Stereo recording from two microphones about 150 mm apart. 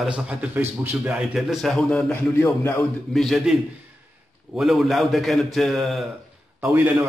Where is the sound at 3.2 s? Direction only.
Centre (ahead or behind).